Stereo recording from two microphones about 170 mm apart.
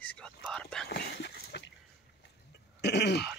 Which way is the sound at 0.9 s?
75° left (ahead or behind).